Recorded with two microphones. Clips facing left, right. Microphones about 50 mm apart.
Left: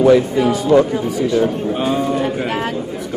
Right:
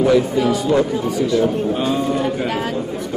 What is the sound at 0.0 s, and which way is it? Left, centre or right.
Speech, centre.